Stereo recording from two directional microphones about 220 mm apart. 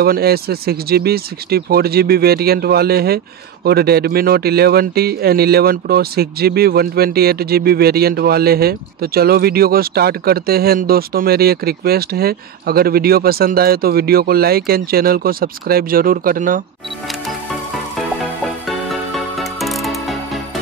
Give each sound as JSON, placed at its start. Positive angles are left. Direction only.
{"t": 0.0, "sound": "speech", "side_deg": -45}
{"t": 19.1, "sound": "music", "side_deg": 0}